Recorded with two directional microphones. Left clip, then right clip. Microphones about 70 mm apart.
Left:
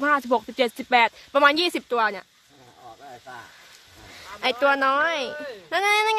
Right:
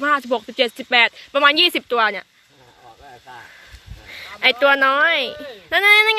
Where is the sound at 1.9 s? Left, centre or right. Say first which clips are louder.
Right 5 dB; centre.